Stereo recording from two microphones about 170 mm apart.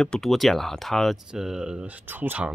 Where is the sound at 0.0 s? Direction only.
Centre (ahead or behind).